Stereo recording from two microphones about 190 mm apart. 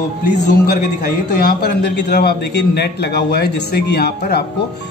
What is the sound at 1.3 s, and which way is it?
A man's voice, 60° left (ahead or behind).